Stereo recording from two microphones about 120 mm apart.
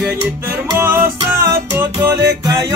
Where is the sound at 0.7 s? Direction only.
20° right (ahead or behind).